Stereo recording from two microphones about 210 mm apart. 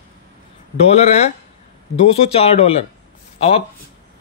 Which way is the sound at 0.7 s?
30° left (ahead or behind).